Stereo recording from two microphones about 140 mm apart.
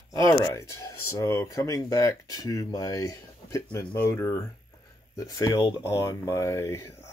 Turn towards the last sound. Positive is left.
turn(degrees=20)  # may be behind; listen again after turning